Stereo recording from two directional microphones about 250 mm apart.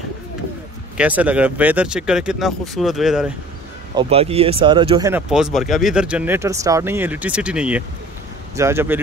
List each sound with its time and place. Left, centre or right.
0.9 s speech: centre
3.9 s speech: right
5.1 s speech: centre